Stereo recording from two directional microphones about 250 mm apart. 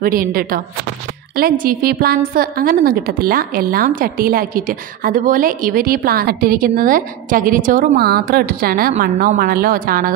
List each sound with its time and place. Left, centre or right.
0.0 s a woman's voice: right